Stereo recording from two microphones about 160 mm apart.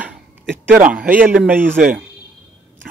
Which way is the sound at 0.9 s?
10° right (ahead or behind).